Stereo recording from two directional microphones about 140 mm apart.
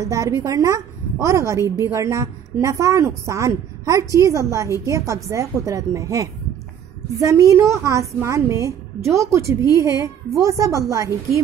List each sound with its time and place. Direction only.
0.1 s a woman's voice: 20° right (ahead or behind)